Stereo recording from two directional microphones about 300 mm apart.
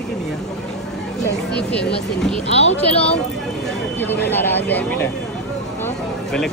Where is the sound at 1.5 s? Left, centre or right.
Centre.